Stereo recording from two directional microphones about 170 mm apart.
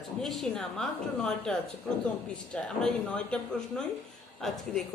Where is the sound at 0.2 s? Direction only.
Centre (ahead or behind).